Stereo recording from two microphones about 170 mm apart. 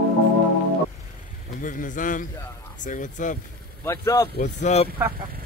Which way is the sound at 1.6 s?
50° left (ahead or behind).